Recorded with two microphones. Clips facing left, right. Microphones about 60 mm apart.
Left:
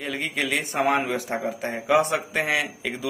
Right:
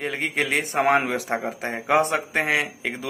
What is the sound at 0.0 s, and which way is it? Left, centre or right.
A man's voice, right.